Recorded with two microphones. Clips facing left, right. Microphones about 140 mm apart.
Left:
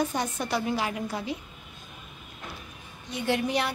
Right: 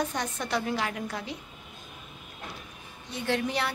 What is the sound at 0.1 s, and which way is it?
A woman's voice, 10° left (ahead or behind).